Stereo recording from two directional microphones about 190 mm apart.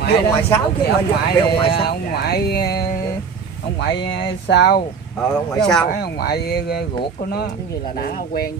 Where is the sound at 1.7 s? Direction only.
55° left (ahead or behind).